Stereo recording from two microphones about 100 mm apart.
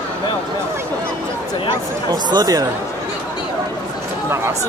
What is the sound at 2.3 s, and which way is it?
Speech, 40° right (ahead or behind).